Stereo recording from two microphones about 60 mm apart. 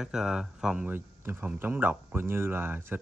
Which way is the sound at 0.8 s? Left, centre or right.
Right.